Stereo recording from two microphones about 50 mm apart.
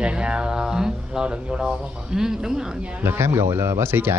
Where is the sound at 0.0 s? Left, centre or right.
Right.